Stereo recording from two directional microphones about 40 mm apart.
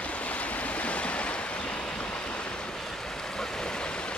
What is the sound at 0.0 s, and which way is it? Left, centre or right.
Stream, left.